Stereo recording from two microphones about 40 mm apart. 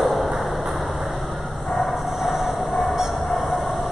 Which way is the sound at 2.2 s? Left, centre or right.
Centre.